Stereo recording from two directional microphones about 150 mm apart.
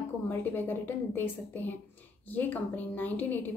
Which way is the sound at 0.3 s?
15° left (ahead or behind).